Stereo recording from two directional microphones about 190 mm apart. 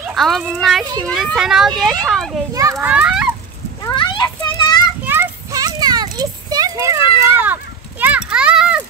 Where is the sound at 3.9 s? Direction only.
25° left (ahead or behind).